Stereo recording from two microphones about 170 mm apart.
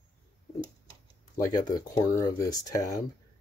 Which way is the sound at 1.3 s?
20° left (ahead or behind).